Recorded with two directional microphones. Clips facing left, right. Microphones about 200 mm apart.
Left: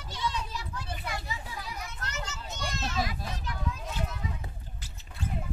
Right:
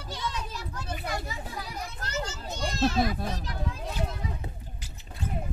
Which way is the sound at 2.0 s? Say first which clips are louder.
Right 5 dB; 35° right (ahead or behind).